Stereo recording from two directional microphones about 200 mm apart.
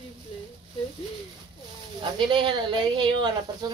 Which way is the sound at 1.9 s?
25° right (ahead or behind).